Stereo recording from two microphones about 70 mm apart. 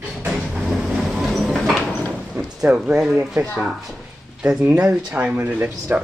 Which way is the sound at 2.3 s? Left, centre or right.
Centre.